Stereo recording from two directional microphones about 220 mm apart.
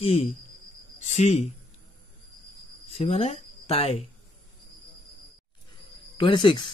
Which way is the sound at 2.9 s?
30° left (ahead or behind).